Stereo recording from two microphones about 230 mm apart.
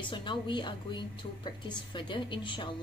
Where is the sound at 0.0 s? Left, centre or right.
Left.